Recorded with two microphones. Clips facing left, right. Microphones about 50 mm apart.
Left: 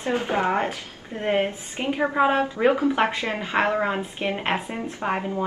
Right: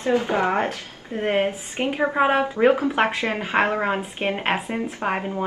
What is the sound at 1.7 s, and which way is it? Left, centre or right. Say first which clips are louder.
A woman's voice: even; right.